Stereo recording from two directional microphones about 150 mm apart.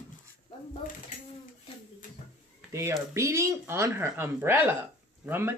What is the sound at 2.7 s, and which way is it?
Speech, 20° right (ahead or behind).